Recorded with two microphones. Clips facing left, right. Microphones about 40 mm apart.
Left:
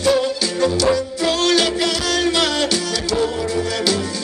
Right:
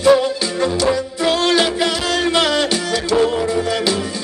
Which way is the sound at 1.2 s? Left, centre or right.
Right.